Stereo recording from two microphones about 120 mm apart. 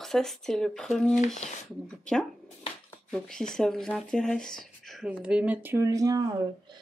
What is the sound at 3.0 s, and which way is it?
Speech, 5° left (ahead or behind).